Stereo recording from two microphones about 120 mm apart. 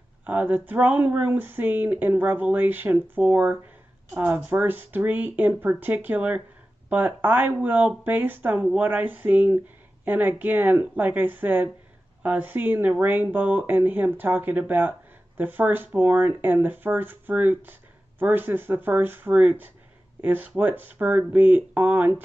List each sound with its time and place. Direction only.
0.2 s speech: 10° right (ahead or behind)